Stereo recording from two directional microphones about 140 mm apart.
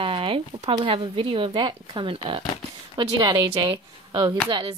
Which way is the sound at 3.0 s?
30° right (ahead or behind).